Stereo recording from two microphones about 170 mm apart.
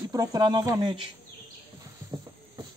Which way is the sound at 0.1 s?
20° right (ahead or behind).